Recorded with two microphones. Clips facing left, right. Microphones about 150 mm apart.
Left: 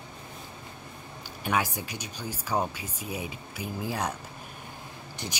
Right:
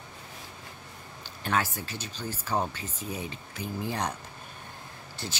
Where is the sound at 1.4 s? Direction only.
15° left (ahead or behind).